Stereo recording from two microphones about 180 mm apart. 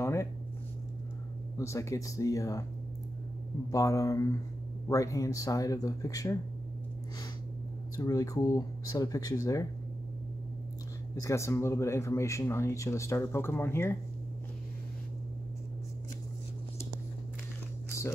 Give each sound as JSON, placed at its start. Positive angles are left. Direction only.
{"t": 0.0, "sound": "a sound", "side_deg": 15}
{"t": 1.6, "sound": "speech", "side_deg": 15}
{"t": 3.7, "sound": "speech", "side_deg": 20}
{"t": 7.9, "sound": "speech", "side_deg": 20}
{"t": 11.2, "sound": "speech", "side_deg": 15}
{"t": 17.9, "sound": "a sound", "side_deg": 15}